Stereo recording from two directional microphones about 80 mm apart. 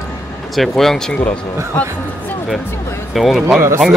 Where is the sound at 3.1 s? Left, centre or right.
Centre.